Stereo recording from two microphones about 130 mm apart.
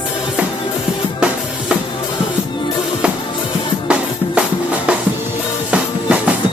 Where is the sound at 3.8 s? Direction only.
10° right (ahead or behind).